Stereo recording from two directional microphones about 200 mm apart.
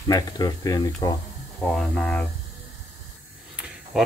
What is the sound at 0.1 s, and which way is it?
Speech, 20° left (ahead or behind).